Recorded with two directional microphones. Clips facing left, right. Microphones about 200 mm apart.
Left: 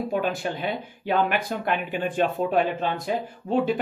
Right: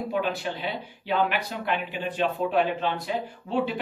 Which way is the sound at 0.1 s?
45° left (ahead or behind).